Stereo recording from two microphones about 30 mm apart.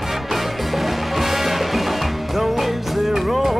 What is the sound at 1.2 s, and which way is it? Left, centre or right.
Music, centre.